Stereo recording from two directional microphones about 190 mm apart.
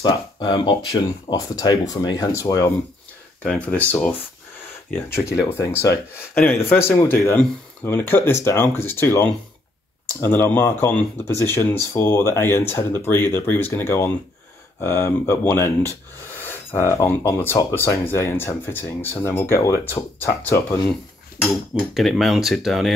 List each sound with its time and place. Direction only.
0.0 s speech: 25° left (ahead or behind); by 3.8 s 5° left (ahead or behind)
4.9 s speech: 15° left (ahead or behind)
21.5 s cutlery: centre (ahead or behind)